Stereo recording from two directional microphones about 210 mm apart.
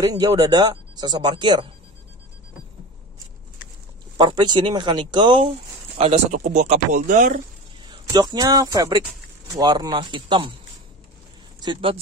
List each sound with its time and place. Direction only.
0.0 s speech: 20° right (ahead or behind)
4.2 s speech: 20° right (ahead or behind); by 7.4 s 40° right (ahead or behind)
8.1 s speech: 20° right (ahead or behind)
11.6 s speech: 25° right (ahead or behind)